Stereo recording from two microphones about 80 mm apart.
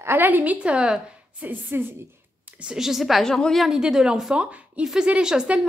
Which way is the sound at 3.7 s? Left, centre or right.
Centre.